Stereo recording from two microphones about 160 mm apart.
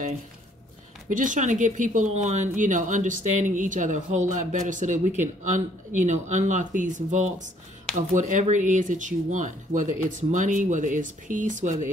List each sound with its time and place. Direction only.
1.1 s speech: 55° right (ahead or behind)